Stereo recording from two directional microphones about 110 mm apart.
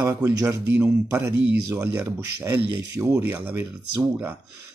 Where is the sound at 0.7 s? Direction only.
20° right (ahead or behind).